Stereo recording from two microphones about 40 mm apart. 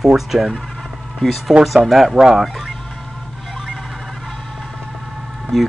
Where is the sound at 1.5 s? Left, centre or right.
Centre.